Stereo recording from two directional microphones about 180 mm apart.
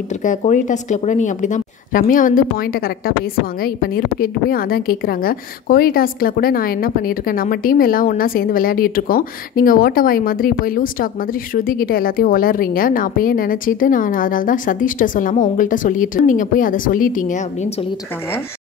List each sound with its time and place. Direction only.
0.2 s a woman's voice: 45° left (ahead or behind)
3.6 s a woman's voice: 55° left (ahead or behind)